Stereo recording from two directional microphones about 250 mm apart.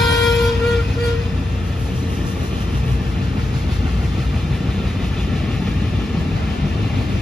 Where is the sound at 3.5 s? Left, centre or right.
Centre.